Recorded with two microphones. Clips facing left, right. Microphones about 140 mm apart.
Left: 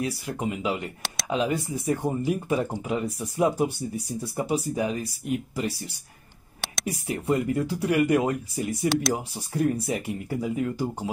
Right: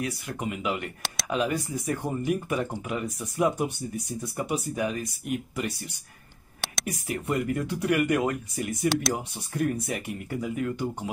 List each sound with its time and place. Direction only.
0.0 s speech: 30° left (ahead or behind)
6.6 s a sound: centre (ahead or behind)
6.9 s speech: 30° left (ahead or behind)
8.8 s speech: centre (ahead or behind)
9.1 s speech: 30° left (ahead or behind)